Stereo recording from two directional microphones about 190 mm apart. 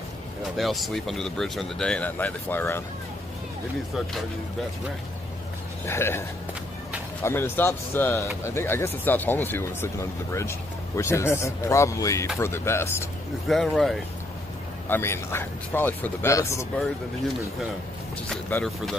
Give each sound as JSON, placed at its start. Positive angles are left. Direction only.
{"t": 0.6, "sound": "speech", "side_deg": 0}
{"t": 5.9, "sound": "speech", "side_deg": 15}
{"t": 7.2, "sound": "speech", "side_deg": 10}
{"t": 13.5, "sound": "speech", "side_deg": 0}
{"t": 14.9, "sound": "speech", "side_deg": 15}
{"t": 18.3, "sound": "speech", "side_deg": 5}